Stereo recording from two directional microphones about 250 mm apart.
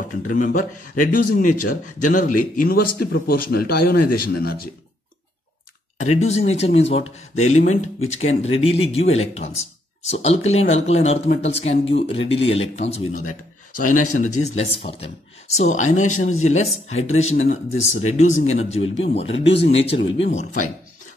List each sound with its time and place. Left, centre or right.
0.3 s speech: left
5.9 s speech: left
13.1 s speech: left
13.7 s speech: left